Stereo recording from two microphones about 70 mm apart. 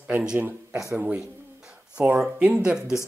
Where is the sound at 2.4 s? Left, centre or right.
Centre.